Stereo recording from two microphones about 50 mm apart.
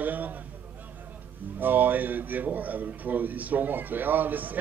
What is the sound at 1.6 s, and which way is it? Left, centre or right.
A man's voice, right.